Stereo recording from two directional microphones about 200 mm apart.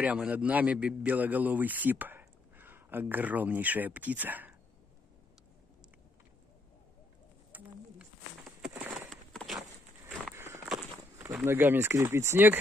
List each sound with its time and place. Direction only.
0.0 s a man's voice: 5° right (ahead or behind)
7.5 s bird: 10° right (ahead or behind)
8.6 s walk: 5° right (ahead or behind)
10.3 s walk: 15° right (ahead or behind)
10.6 s walk: 5° right (ahead or behind)
11.3 s a man's voice: 10° right (ahead or behind)